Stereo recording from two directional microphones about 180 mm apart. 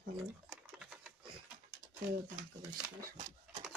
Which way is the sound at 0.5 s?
5° right (ahead or behind).